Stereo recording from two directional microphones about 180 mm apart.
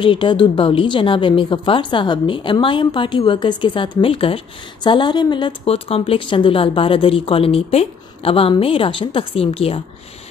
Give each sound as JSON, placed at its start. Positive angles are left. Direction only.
{"t": 0.0, "sound": "a woman's voice", "side_deg": 30}